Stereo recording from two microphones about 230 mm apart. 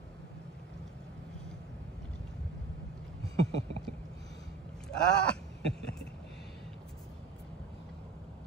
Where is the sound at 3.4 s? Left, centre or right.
Left.